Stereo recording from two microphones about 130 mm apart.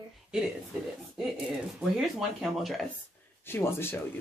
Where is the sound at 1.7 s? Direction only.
Centre (ahead or behind).